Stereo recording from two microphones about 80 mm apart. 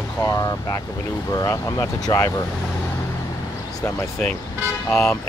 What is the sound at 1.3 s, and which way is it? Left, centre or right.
Speech, left.